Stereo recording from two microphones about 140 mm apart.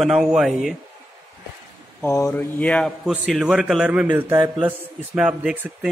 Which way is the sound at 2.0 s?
20° left (ahead or behind).